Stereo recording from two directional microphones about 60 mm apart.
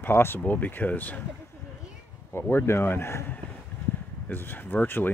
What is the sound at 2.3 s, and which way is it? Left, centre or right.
Speech, left.